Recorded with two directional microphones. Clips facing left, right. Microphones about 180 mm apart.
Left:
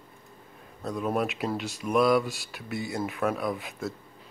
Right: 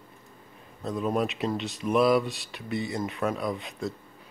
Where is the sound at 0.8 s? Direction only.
Centre (ahead or behind).